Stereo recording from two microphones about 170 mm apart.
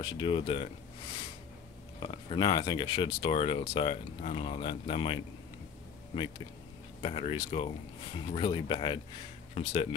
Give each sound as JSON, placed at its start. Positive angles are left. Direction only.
{"t": 0.0, "sound": "speech", "side_deg": 30}
{"t": 2.0, "sound": "speech", "side_deg": 25}
{"t": 7.0, "sound": "speech", "side_deg": 35}